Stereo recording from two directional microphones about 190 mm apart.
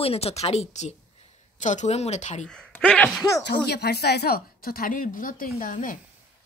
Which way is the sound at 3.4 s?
60° left (ahead or behind).